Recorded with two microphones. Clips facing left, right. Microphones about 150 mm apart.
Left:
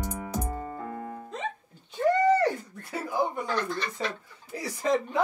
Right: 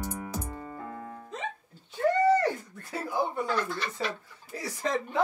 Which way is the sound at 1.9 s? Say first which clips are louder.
Left 1 dB; 15° left (ahead or behind).